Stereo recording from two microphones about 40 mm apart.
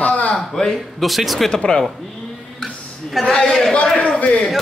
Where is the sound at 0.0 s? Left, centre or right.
Left.